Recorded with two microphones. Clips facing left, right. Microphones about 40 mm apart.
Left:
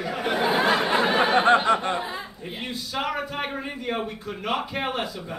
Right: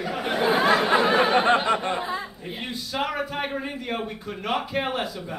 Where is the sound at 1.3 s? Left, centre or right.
Left.